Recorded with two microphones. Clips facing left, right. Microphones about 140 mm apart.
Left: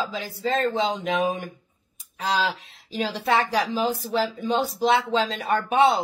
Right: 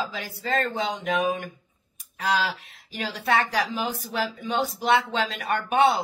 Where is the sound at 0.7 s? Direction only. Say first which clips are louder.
Left 2 dB; 30° left (ahead or behind).